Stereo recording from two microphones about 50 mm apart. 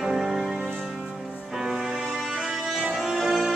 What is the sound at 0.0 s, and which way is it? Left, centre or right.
Music, centre.